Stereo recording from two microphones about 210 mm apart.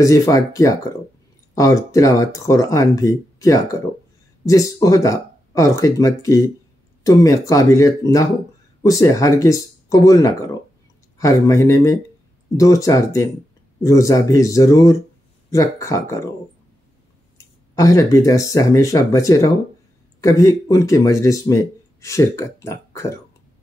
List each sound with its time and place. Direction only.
0.0 s speech: 15° left (ahead or behind)
17.7 s speech: 15° left (ahead or behind)